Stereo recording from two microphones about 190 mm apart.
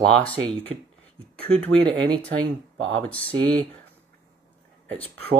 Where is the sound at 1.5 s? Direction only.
5° left (ahead or behind).